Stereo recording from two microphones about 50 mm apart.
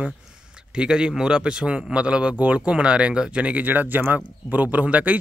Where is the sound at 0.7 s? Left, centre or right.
Centre.